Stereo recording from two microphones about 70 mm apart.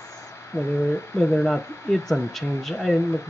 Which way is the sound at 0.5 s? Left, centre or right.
Left.